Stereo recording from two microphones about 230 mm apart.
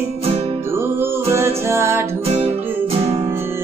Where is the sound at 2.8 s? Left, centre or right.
Right.